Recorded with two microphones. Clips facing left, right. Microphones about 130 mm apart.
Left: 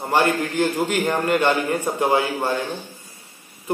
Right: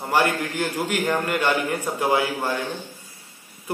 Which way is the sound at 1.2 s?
15° left (ahead or behind).